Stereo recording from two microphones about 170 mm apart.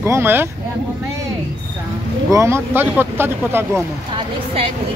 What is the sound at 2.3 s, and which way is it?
Speech, 15° right (ahead or behind).